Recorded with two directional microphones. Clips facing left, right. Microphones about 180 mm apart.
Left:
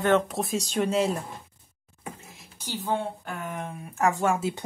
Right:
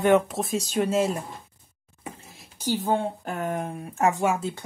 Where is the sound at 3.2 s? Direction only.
40° right (ahead or behind).